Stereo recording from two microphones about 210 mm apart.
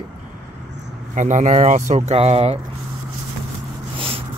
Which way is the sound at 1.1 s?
35° right (ahead or behind).